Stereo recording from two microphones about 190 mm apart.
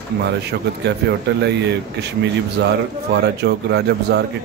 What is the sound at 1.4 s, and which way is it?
Speech, 65° right (ahead or behind).